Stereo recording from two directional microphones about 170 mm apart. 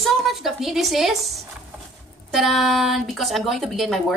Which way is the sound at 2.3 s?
Centre (ahead or behind).